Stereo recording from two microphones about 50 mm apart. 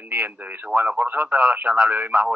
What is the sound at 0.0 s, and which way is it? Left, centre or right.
Radio, right.